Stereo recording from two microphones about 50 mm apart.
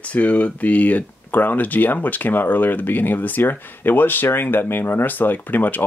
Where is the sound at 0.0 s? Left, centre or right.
Left.